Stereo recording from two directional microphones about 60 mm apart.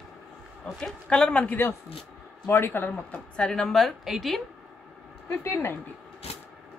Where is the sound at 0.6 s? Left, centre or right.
Centre.